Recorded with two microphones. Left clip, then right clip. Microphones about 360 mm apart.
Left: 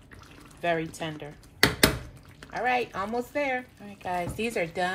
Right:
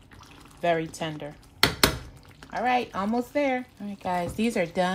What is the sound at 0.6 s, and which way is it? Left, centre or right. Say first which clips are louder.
Speech: right 3 dB; right.